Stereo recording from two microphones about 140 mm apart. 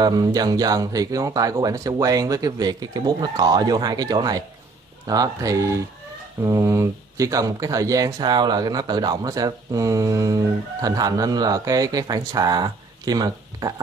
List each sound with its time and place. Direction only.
0.0 s speech: 30° right (ahead or behind)